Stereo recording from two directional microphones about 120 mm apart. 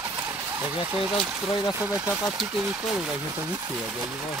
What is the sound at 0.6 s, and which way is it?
Speech, 10° right (ahead or behind).